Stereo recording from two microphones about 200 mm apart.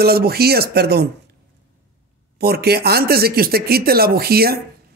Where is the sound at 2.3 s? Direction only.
50° right (ahead or behind).